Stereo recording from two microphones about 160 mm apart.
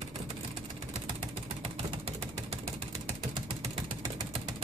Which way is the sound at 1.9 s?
35° right (ahead or behind).